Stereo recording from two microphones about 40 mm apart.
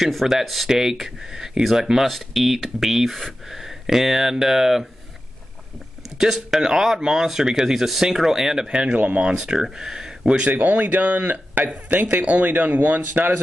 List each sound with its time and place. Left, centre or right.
0.3 s speech: centre
6.1 s speech: centre
8.6 s speech: right
8.9 s speech: right
9.4 s speech: centre
10.5 s speech: right